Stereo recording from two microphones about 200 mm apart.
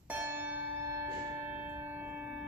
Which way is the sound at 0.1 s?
10° right (ahead or behind).